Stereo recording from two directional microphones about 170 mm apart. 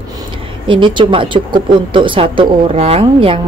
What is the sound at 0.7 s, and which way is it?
A woman's voice, 30° right (ahead or behind).